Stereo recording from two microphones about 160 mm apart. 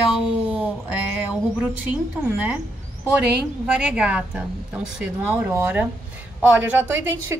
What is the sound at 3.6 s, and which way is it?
A woman's voice, 5° right (ahead or behind).